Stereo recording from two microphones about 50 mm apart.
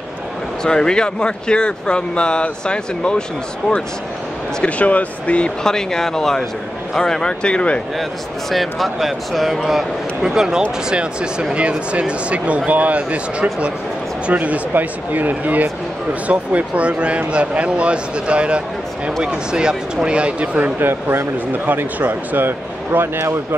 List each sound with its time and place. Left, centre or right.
0.7 s speech: centre
4.6 s speech: left
5.6 s speech: centre
8.0 s a man's voice: centre
10.2 s speech: centre; by 20.7 s right
20.8 s speech: right